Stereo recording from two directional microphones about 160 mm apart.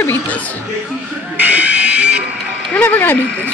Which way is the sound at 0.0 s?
10° left (ahead or behind).